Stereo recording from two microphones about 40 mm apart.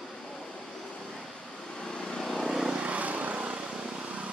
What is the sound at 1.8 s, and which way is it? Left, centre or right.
Vehicle, centre.